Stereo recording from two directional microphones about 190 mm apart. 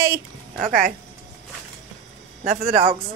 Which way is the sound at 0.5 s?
45° right (ahead or behind).